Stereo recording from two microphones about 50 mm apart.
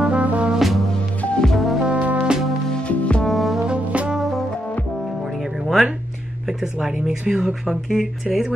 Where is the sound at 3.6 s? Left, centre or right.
Right.